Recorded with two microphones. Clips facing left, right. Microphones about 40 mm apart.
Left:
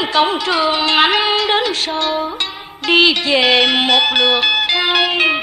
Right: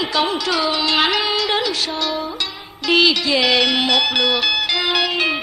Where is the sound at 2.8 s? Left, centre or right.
Left.